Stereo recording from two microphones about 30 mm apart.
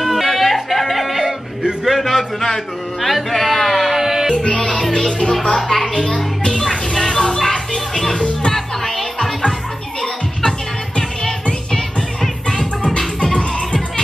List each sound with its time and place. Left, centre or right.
0.0 s music: centre
1.9 s speech: centre
3.6 s music: centre
4.0 s music: centre
4.4 s music: left
4.9 s speech: left
5.6 s speech: centre
5.9 s music: left; by 9.3 s centre
12.8 s music: left